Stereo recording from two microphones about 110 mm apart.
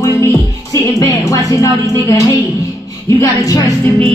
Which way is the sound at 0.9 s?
30° left (ahead or behind).